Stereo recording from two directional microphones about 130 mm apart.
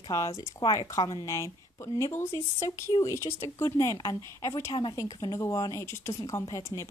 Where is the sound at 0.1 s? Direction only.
25° left (ahead or behind).